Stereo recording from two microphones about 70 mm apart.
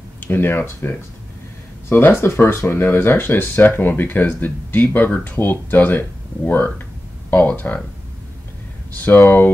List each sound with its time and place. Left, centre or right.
0.2 s speech: left
8.9 s speech: left